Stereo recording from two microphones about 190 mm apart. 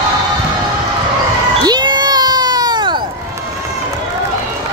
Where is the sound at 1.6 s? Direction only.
20° right (ahead or behind).